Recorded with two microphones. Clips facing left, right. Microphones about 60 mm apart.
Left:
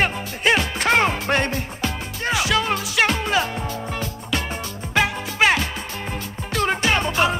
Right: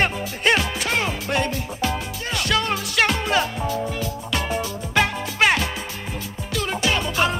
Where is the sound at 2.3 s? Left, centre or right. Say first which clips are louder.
Left 1 dB; centre.